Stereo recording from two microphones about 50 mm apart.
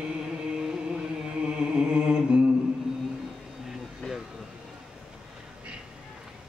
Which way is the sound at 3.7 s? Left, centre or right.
Centre.